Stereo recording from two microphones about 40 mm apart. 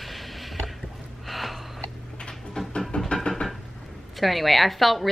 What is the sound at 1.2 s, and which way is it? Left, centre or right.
Sniff, centre.